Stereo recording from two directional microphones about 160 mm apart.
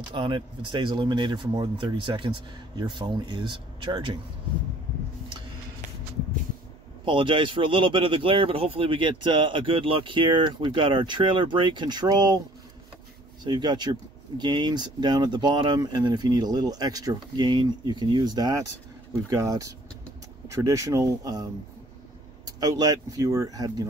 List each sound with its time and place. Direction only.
0.1 s speech: 30° right (ahead or behind)
7.1 s a man's voice: 30° right (ahead or behind)
13.4 s speech: 30° right (ahead or behind)
22.6 s speech: 20° right (ahead or behind)